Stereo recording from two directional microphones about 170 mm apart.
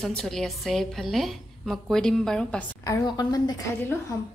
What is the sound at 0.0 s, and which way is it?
A woman's voice, centre (ahead or behind).